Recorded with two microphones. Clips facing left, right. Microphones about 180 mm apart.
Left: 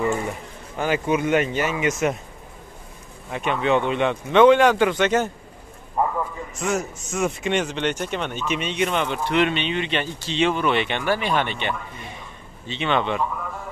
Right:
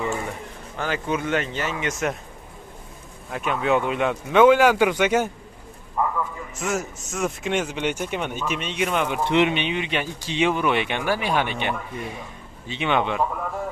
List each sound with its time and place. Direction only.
0.7 s a man's voice: 10° left (ahead or behind)
3.3 s speech: centre (ahead or behind)
6.0 s a sound: 30° left (ahead or behind)
6.6 s speech: centre (ahead or behind)